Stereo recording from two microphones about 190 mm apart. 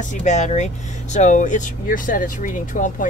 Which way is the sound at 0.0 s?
40° left (ahead or behind).